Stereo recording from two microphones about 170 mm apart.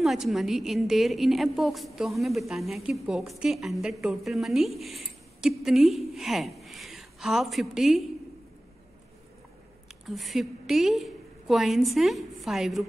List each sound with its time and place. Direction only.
0.0 s a woman's voice: centre (ahead or behind)
10.0 s a woman's voice: centre (ahead or behind)